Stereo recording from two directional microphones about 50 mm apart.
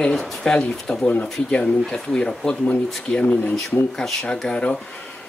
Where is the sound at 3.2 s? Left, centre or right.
Left.